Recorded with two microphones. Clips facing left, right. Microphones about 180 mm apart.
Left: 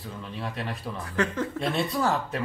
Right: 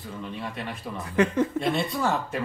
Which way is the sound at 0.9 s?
20° right (ahead or behind).